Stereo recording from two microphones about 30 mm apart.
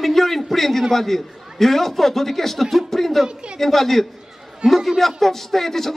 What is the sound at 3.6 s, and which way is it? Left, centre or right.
A man's voice, centre.